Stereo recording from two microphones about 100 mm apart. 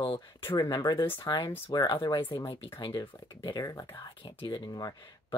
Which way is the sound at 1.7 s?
45° left (ahead or behind).